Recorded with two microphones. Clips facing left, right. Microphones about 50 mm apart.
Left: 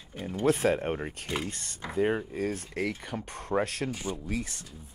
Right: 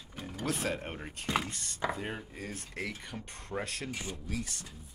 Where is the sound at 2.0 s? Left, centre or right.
Left.